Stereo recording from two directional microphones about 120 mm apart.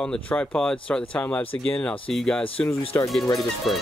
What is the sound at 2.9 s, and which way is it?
Speech, 20° left (ahead or behind).